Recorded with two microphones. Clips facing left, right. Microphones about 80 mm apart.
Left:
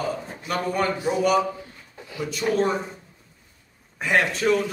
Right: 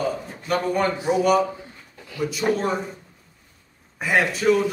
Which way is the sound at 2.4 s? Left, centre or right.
Right.